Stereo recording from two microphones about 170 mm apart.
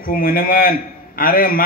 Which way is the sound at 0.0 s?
60° left (ahead or behind).